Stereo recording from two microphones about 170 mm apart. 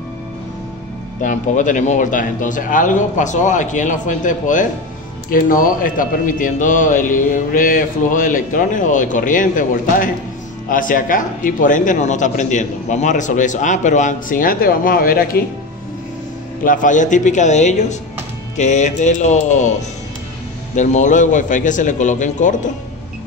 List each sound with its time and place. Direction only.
1.2 s a man's voice: 50° left (ahead or behind)
16.6 s a man's voice: 50° left (ahead or behind)
20.7 s a man's voice: 45° left (ahead or behind)